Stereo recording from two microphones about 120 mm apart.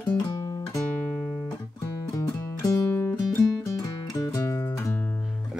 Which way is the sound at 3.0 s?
20° left (ahead or behind).